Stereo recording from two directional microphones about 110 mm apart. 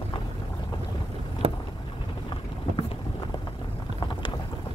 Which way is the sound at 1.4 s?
55° right (ahead or behind).